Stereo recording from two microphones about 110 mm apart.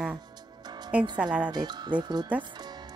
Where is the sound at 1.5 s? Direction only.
40° right (ahead or behind).